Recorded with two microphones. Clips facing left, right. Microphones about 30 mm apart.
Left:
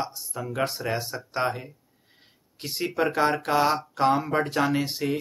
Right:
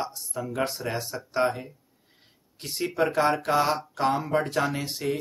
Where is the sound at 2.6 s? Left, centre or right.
Centre.